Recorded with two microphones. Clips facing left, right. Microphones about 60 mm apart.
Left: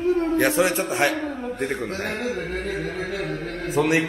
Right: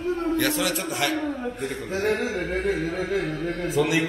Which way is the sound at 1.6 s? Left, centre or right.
Left.